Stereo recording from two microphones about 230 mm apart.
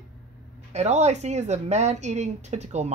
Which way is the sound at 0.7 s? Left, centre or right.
Right.